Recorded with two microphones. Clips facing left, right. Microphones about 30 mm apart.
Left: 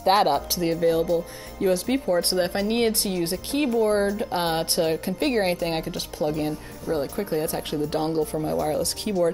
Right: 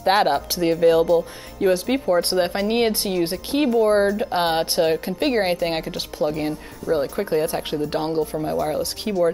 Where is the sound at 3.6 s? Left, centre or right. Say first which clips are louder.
Right 4 dB; centre.